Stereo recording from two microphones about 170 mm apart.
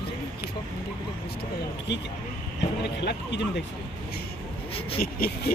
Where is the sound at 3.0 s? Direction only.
90° left.